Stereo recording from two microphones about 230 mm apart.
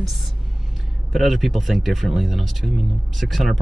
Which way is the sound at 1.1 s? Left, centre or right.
Centre.